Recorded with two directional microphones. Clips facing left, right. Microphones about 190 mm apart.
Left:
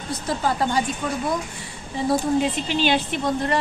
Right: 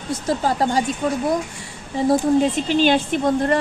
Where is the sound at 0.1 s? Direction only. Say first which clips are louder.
Right 3 dB; 40° right (ahead or behind).